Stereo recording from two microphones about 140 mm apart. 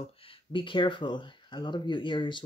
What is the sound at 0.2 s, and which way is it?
Speech, 40° left (ahead or behind).